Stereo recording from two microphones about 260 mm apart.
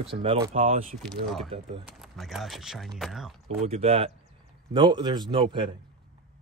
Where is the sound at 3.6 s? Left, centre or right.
Right.